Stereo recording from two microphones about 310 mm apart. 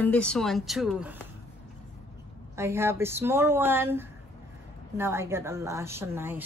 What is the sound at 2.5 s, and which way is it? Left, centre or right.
A woman's voice, centre.